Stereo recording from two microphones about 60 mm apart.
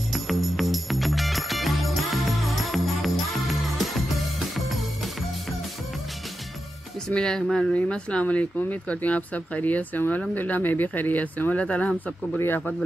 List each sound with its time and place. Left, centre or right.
0.1 s music: centre
7.2 s speech: centre
12.4 s speech: left